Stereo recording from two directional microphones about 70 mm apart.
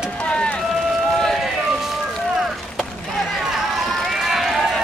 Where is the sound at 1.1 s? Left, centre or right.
Centre.